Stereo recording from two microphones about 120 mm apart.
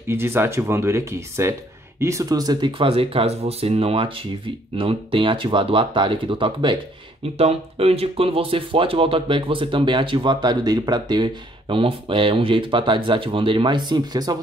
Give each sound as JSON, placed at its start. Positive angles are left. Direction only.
{"t": 0.1, "sound": "speech", "side_deg": -20}
{"t": 7.3, "sound": "speech", "side_deg": -55}